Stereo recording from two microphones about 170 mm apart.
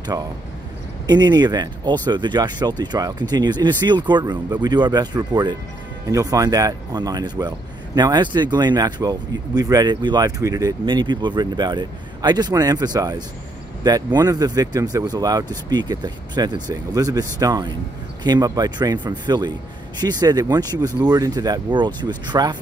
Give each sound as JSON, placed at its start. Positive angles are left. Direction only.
{"t": 1.0, "sound": "speech", "side_deg": -25}